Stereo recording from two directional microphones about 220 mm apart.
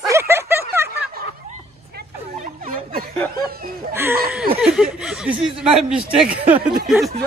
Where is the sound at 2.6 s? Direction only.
40° right (ahead or behind).